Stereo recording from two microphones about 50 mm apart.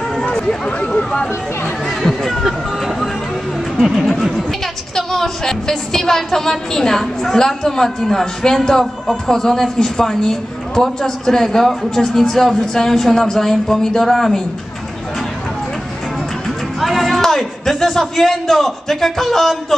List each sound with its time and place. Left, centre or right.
0.2 s speech: centre
1.9 s speech: centre
3.7 s speech: centre
4.2 s music: centre
4.9 s a woman's voice: centre
16.4 s speech: centre